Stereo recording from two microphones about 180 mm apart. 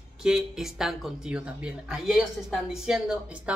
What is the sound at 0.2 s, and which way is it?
A woman's voice, centre (ahead or behind).